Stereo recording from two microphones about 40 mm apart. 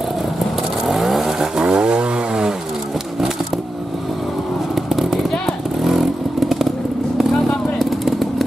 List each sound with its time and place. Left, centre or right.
0.8 s vehicle: centre
1.6 s chainsaw: right
7.8 s firecracker: centre